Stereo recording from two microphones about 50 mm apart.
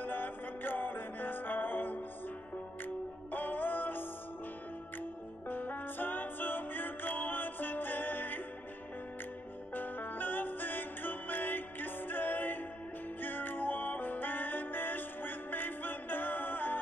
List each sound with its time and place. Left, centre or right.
0.0 s music: left
5.5 s music: left
9.8 s music: left